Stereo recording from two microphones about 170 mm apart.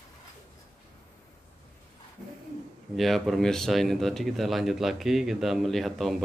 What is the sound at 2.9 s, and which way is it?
Speech, centre (ahead or behind).